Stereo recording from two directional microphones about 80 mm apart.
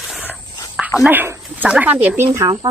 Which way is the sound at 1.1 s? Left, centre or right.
Right.